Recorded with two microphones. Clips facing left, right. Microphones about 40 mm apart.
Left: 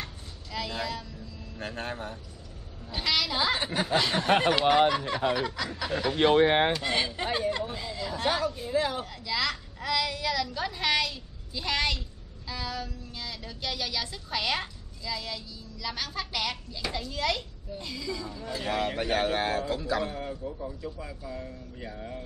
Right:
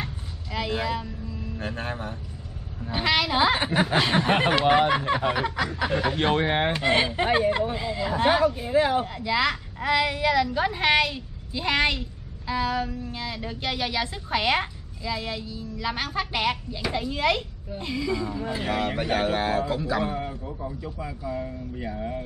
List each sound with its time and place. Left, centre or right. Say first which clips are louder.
0.0 s a sound: right 6 dB; right
1.7 s a man's voice: right 2 dB; centre
2.8 s speech: right 5 dB; right
6.4 s speech: left 1 dB; centre
6.7 s speech: right 6 dB; right
18.7 s a man's voice: right 2 dB; centre